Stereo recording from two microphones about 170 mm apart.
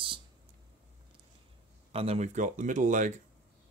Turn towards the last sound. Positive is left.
turn(degrees=-50)  # may be behind; listen again after turning